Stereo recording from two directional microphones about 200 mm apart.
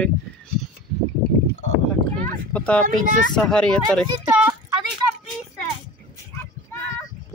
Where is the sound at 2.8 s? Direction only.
40° right (ahead or behind).